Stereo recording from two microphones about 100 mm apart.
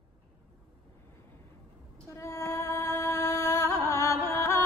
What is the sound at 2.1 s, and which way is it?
Music, 30° left (ahead or behind).